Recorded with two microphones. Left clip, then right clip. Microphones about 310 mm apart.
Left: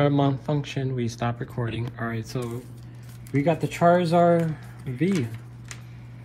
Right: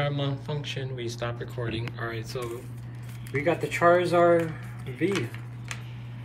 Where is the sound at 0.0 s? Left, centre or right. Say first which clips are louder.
Left 8 dB; centre.